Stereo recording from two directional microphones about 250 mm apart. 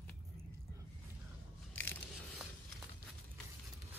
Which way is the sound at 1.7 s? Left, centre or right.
Centre.